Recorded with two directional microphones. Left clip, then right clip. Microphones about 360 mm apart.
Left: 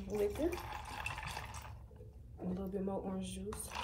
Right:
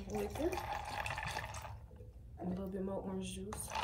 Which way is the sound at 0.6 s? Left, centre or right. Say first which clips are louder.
Right 3 dB; right.